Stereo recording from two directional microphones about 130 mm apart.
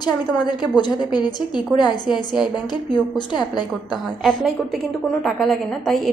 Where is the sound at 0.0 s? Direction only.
35° left (ahead or behind).